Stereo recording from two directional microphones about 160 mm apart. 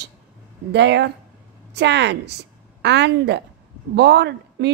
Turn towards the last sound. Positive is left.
turn(degrees=-90)